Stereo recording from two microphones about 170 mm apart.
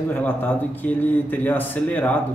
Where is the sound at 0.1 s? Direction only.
10° left (ahead or behind).